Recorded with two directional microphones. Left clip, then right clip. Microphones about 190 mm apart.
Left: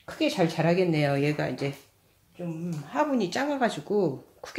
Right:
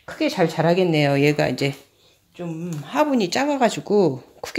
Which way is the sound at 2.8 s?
50° right (ahead or behind).